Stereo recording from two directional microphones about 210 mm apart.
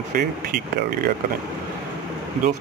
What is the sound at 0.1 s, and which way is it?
Speech, 45° right (ahead or behind).